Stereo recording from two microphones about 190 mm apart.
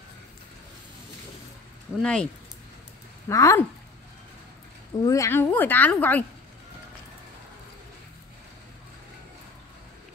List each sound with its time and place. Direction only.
2.0 s speech: 5° left (ahead or behind)
3.3 s a woman's voice: 15° left (ahead or behind)
5.0 s a woman's voice: 15° left (ahead or behind)